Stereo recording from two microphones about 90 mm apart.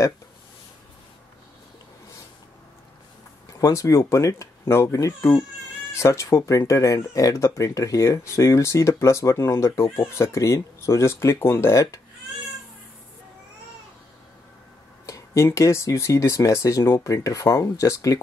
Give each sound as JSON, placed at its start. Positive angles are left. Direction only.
{"t": 3.5, "sound": "speech", "side_deg": 40}
{"t": 15.0, "sound": "speech", "side_deg": 35}